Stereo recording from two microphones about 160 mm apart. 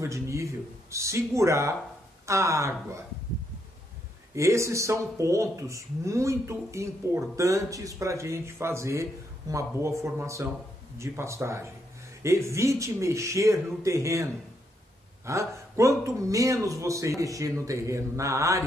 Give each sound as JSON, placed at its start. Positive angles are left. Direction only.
{"t": 0.0, "sound": "a sound", "side_deg": -20}
{"t": 0.9, "sound": "speech", "side_deg": -20}
{"t": 4.4, "sound": "speech", "side_deg": -20}